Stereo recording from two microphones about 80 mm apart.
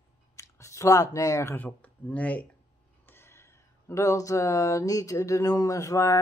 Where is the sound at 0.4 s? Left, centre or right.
Left.